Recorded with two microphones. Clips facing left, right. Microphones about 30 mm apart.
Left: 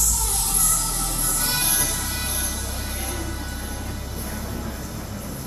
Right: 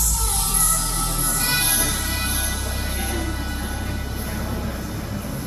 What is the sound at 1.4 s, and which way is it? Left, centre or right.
Music, centre.